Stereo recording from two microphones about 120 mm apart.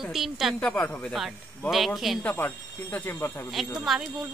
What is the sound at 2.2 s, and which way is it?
Speech, 15° left (ahead or behind).